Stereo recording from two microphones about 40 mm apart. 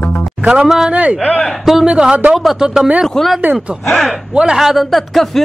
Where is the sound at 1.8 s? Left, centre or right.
Right.